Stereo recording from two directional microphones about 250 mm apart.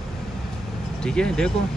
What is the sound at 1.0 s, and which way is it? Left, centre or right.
Speech, centre.